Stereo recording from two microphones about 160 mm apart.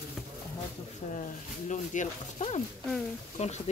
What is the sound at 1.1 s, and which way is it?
Speech, 50° left (ahead or behind).